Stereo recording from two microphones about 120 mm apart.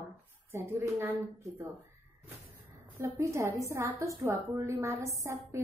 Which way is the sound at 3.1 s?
25° right (ahead or behind).